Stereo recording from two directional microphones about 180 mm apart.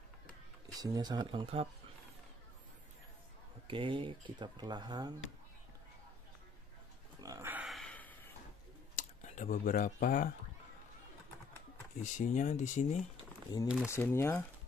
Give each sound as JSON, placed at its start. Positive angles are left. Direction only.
{"t": 0.7, "sound": "speech", "side_deg": -20}
{"t": 3.6, "sound": "speech", "side_deg": -30}
{"t": 7.2, "sound": "dog", "side_deg": -20}
{"t": 7.6, "sound": "gasp", "side_deg": 0}
{"t": 8.9, "sound": "speech", "side_deg": 40}
{"t": 12.0, "sound": "speech", "side_deg": 45}
{"t": 13.8, "sound": "speech", "side_deg": 15}